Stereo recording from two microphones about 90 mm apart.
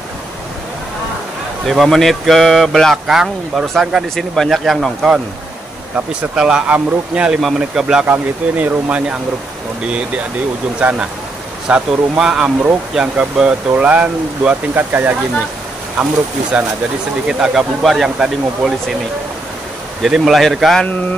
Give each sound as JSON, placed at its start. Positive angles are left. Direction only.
{"t": 1.7, "sound": "speech", "side_deg": 0}
{"t": 10.8, "sound": "speech", "side_deg": -15}
{"t": 17.3, "sound": "speech", "side_deg": -5}
{"t": 20.0, "sound": "speech", "side_deg": 0}